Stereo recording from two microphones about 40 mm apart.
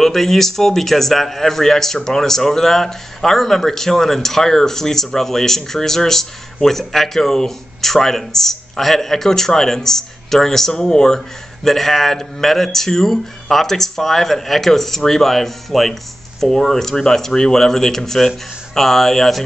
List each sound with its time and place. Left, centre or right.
0.0 s speech: centre